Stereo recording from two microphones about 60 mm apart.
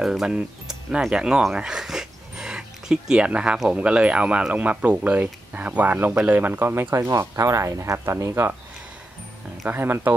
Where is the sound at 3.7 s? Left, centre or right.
Centre.